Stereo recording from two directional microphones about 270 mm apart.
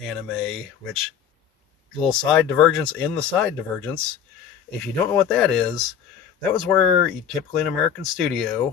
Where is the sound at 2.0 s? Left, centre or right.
Centre.